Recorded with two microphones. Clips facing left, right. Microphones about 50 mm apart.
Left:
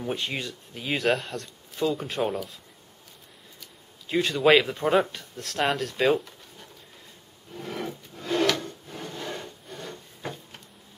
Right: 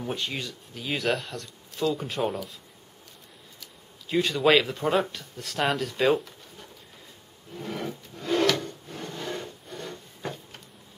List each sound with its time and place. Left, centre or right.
0.0 s speech: centre
4.1 s speech: centre
7.5 s rub: centre